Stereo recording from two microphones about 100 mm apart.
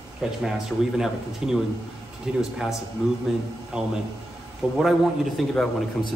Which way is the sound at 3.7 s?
5° right (ahead or behind).